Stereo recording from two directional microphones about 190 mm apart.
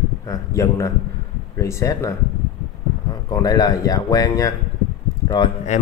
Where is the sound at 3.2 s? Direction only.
20° left (ahead or behind).